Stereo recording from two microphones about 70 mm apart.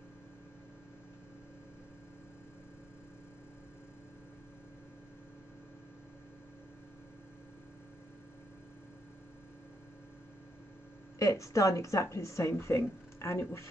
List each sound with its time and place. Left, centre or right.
11.1 s speech: left